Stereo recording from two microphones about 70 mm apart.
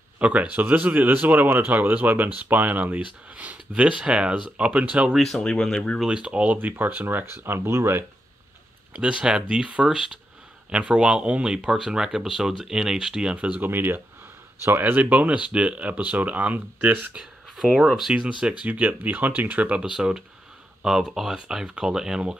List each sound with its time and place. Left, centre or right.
0.2 s speech: centre
5.2 s speech: centre
6.0 s speech: centre; by 8.0 s right
8.9 s speech: centre
13.7 s speech: right
17.1 s speech: centre; by 19.8 s right
19.8 s speech: centre